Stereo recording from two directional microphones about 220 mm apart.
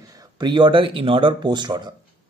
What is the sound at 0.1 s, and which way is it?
Speech, 20° right (ahead or behind).